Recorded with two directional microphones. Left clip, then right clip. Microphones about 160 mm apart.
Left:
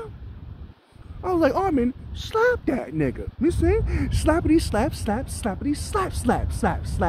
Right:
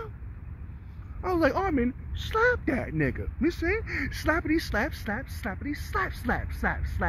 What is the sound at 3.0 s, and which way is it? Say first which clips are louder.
Speech: left 4 dB; 15° left (ahead or behind).